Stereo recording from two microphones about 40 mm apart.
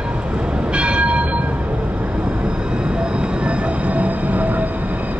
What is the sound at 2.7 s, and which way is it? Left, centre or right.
Train, right.